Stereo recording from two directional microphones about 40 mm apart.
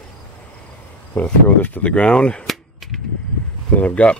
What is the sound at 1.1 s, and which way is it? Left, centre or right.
Speech, left.